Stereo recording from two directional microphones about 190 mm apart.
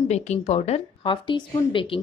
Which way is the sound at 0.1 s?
35° left (ahead or behind).